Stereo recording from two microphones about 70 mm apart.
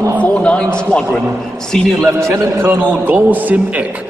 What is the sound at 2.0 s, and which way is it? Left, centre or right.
A man's voice, right.